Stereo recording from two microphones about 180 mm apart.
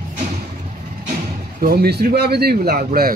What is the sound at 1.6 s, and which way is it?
Speech, 55° right (ahead or behind).